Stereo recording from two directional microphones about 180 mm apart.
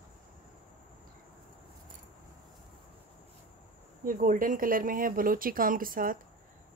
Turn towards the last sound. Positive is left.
turn(degrees=-50)  # may be behind; listen again after turning